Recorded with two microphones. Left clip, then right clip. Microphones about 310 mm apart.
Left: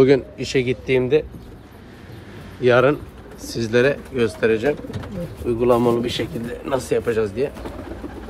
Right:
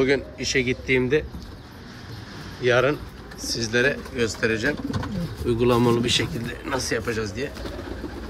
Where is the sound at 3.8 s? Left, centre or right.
Centre.